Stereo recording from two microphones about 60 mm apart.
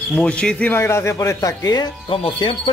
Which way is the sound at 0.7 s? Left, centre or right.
Left.